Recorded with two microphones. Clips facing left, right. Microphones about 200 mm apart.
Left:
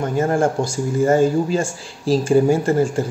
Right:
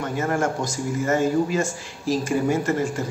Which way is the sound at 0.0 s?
30° left (ahead or behind).